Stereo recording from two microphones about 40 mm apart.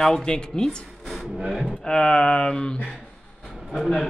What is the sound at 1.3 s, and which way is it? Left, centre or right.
Speech, centre.